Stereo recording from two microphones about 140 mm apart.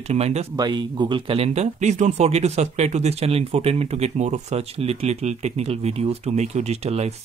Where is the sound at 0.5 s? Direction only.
30° right (ahead or behind).